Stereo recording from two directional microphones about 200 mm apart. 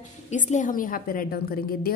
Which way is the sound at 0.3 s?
35° left (ahead or behind).